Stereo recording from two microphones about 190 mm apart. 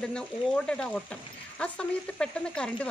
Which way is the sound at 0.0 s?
5° left (ahead or behind).